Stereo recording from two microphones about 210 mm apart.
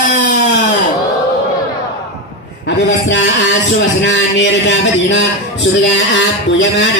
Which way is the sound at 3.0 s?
60° left (ahead or behind).